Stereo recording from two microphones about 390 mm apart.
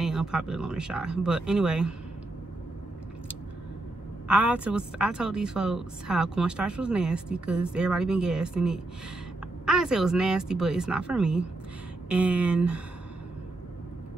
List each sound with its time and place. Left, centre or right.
0.0 s a woman's voice: centre
4.3 s a woman's voice: centre